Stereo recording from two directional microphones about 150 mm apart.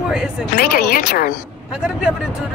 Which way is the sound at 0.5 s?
90° left.